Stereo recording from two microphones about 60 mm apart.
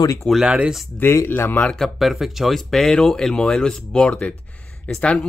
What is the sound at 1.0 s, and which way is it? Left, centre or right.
Speech, left.